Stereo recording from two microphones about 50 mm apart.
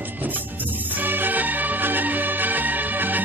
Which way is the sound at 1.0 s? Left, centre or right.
Right.